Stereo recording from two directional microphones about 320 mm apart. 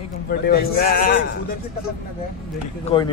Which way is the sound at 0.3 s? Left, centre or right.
Left.